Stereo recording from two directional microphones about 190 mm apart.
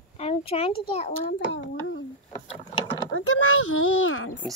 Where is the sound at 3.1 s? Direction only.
90° left.